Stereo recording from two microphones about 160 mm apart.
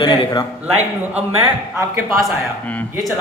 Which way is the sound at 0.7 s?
45° right (ahead or behind).